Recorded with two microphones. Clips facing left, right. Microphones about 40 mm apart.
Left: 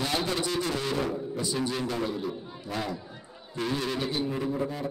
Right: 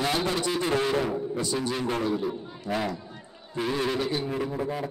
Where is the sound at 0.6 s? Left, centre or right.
Right.